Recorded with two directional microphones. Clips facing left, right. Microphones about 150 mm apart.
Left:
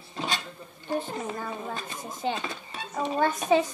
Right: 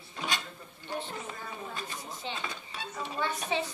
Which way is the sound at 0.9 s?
55° left (ahead or behind).